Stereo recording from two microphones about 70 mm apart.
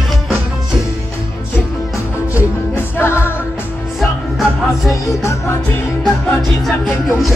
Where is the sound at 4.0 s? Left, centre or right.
Centre.